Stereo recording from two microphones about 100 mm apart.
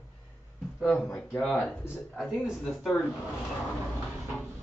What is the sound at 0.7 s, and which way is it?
Speech, 5° left (ahead or behind).